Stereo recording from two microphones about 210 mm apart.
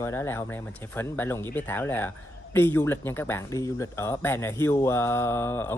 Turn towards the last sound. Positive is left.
turn(degrees=10)  # may be behind; listen again after turning